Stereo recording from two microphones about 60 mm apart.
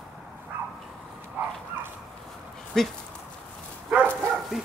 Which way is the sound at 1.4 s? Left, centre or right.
Right.